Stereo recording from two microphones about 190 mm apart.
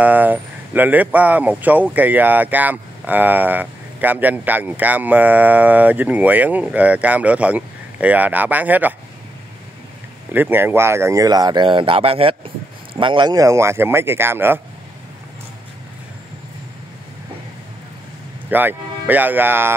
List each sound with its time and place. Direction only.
0.0 s speech: 10° right (ahead or behind)
10.3 s speech: 10° right (ahead or behind)
18.5 s speech: 10° right (ahead or behind)